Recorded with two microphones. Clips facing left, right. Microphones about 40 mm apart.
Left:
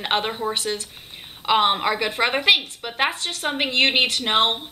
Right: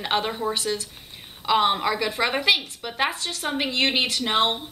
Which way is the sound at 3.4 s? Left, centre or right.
Left.